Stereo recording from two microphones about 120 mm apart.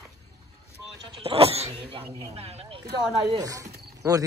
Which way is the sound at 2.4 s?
60° right (ahead or behind).